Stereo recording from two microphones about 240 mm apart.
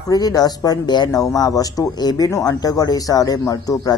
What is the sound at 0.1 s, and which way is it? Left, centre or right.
Speech, centre.